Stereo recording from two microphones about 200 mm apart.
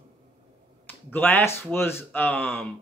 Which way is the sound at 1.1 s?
10° left (ahead or behind).